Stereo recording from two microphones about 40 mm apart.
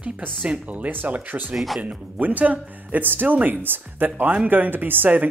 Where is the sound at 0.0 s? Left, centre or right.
Right.